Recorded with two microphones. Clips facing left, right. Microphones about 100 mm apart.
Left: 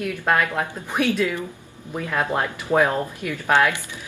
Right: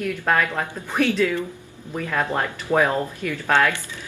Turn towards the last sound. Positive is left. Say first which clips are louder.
# left 1 dB
turn(degrees=15)  # may be behind; listen again after turning